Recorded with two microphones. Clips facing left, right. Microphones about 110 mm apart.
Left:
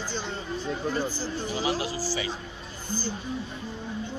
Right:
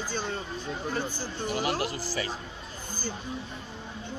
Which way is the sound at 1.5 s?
55° right (ahead or behind).